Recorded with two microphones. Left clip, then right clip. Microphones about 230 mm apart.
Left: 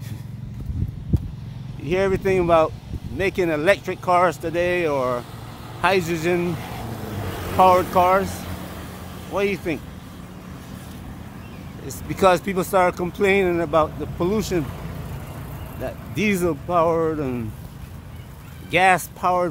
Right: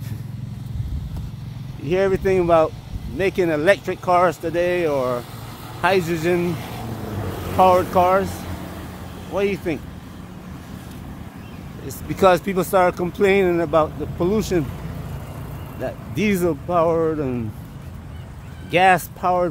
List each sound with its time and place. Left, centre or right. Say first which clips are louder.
1.9 s speech: right 2 dB; centre
6.4 s speech: right 1 dB; right
7.1 s vehicle: right 1 dB; centre
7.5 s speech: even; centre
8.3 s vehicle: right 1 dB; left
9.3 s speech: right 1 dB; centre
12.1 s speech: right 2 dB; centre
15.8 s speech: right 1 dB; centre
18.7 s speech: right 2 dB; centre